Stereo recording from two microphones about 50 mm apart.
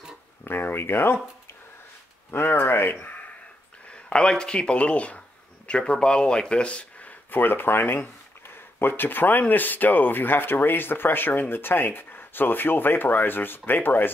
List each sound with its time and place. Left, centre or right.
0.5 s speech: left
2.3 s speech: left
3.9 s speech: centre
7.3 s speech: left